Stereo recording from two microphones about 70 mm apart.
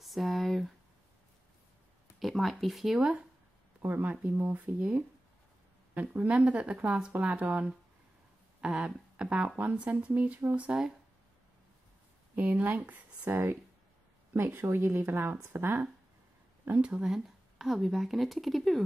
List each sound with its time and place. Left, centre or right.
0.0 s a sound: centre
2.1 s speech: centre
3.8 s speech: right
12.4 s speech: right
16.8 s speech: centre